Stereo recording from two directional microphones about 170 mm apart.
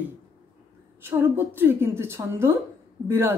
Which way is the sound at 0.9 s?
10° right (ahead or behind).